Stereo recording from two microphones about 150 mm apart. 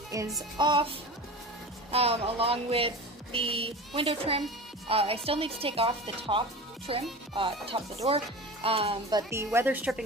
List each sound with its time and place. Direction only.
0.1 s music: 20° right (ahead or behind)
1.9 s music: 40° right (ahead or behind)
9.3 s speech: 15° right (ahead or behind)